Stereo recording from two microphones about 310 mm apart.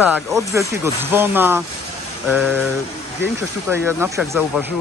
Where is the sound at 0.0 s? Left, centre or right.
Centre.